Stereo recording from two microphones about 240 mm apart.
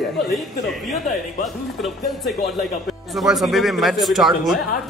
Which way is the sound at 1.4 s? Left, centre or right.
Centre.